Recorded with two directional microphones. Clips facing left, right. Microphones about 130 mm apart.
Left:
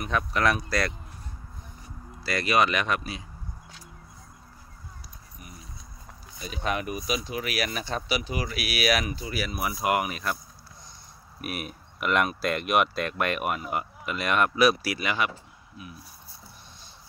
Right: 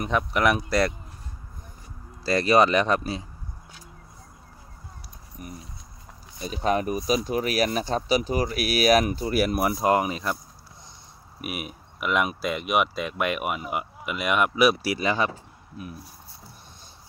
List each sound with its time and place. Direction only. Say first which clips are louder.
0.1 s speech: right 2 dB; 20° right (ahead or behind)
2.2 s speech: right 5 dB; 35° right (ahead or behind)
5.4 s a sound: right 9 dB; 45° right (ahead or behind)
6.4 s speech: right 6 dB; 35° right (ahead or behind)
9.8 s speech: right 2 dB; 25° right (ahead or behind)
11.4 s speech: right 1 dB; 10° right (ahead or behind); by 15.3 s 30° right (ahead or behind)